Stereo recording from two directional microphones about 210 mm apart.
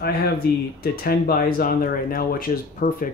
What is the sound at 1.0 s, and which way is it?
Speech, 45° left (ahead or behind).